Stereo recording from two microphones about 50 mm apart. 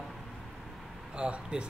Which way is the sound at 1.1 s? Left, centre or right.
Centre.